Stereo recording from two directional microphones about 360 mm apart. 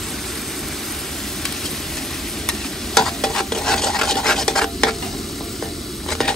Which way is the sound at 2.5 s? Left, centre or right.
Centre.